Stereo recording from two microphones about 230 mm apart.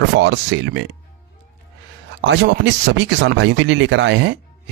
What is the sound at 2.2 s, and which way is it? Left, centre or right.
Speech, right.